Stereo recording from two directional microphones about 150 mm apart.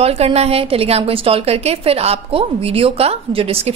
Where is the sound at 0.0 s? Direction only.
40° right (ahead or behind).